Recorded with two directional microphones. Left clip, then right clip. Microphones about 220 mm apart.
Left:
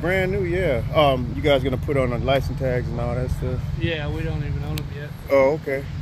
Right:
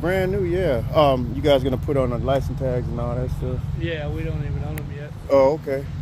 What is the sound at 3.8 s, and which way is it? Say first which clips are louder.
Speech: left 1 dB; 50° left (ahead or behind).